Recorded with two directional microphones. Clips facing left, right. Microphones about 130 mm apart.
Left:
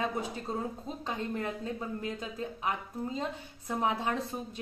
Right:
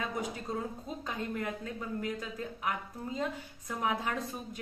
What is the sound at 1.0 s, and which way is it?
A woman's voice, 25° left (ahead or behind).